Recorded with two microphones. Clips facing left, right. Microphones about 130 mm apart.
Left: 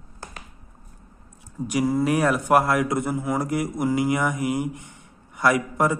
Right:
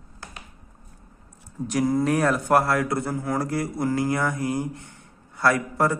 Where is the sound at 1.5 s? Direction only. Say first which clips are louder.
Even; 10° left (ahead or behind).